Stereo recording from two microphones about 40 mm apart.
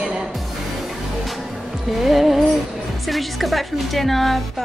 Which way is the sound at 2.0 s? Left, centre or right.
Centre.